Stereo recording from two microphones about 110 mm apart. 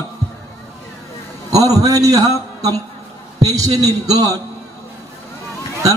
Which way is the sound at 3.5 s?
35° right (ahead or behind).